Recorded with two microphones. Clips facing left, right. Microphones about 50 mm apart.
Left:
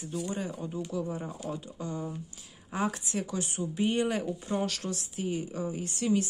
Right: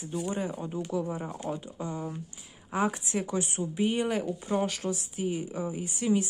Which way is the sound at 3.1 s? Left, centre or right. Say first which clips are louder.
Right 3 dB; right.